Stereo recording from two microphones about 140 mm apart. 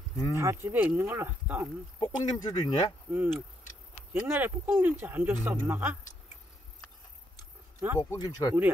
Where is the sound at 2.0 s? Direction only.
30° left (ahead or behind).